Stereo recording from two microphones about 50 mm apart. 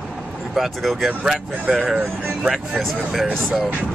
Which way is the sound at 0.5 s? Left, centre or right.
Centre.